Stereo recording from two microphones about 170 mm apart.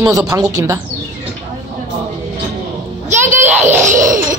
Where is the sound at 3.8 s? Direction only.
50° right (ahead or behind).